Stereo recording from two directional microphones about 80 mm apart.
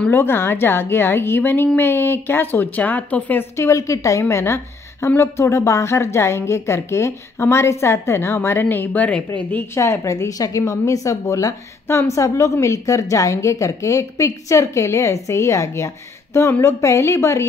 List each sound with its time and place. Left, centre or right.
0.1 s speech: left
3.5 s a woman's voice: left; by 9.2 s centre
9.8 s a woman's voice: left